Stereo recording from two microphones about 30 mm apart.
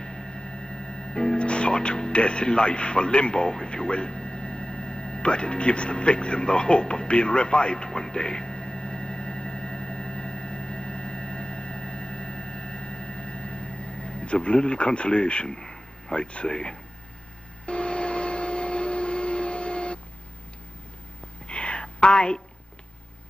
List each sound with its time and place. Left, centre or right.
0.0 s music: left
2.1 s radio: left
15.4 s a sound: left
16.2 s speech: left
16.4 s speech: left
17.6 s vehicle: left
21.5 s a sound: left